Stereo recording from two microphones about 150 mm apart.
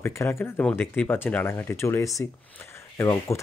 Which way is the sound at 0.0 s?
15° left (ahead or behind).